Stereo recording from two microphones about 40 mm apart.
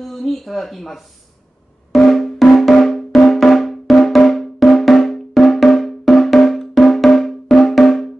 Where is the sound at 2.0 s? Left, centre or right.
Centre.